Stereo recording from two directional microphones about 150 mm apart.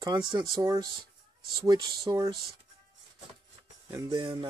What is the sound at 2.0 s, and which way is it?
Speech, 25° right (ahead or behind).